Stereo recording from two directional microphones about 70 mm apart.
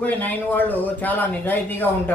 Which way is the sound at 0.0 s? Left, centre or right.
Left.